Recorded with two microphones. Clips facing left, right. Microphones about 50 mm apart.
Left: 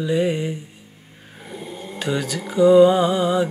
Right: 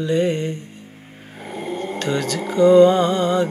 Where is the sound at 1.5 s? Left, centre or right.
Right.